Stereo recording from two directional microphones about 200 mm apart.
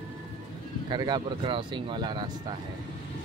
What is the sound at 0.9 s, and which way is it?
Speech, 20° right (ahead or behind).